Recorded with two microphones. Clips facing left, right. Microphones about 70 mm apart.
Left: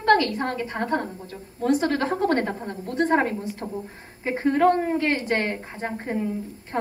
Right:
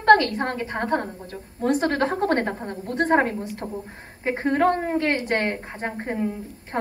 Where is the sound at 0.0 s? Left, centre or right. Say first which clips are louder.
Right 3 dB; right.